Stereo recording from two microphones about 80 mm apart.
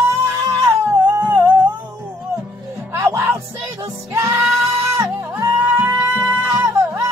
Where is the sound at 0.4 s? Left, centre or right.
Right.